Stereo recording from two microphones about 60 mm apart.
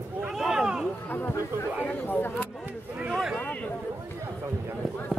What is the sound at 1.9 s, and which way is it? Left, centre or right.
Speech, left.